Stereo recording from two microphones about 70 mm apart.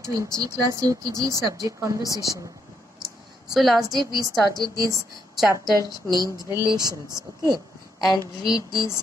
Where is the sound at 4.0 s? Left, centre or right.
Right.